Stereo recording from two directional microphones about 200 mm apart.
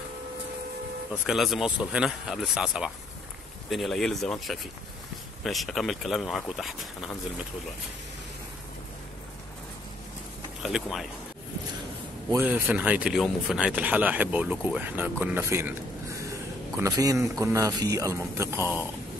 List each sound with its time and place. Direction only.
1.2 s speech: centre (ahead or behind)
10.6 s speech: centre (ahead or behind)
12.3 s a man's voice: 10° right (ahead or behind)
16.7 s a man's voice: 15° right (ahead or behind)